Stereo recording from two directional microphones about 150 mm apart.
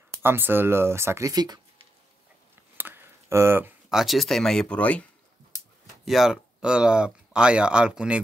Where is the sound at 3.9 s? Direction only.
Centre (ahead or behind).